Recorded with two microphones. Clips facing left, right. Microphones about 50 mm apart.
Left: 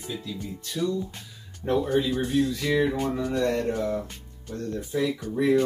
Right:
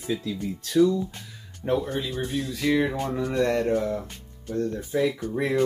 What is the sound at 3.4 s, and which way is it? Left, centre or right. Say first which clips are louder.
Speech: right 4 dB; right.